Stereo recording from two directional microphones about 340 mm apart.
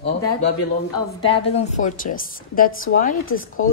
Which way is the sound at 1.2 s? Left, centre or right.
Centre.